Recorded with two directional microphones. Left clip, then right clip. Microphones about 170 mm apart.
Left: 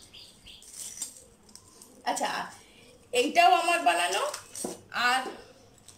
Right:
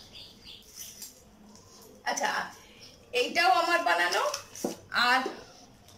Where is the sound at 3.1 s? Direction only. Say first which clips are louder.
Left 3 dB; 15° left (ahead or behind).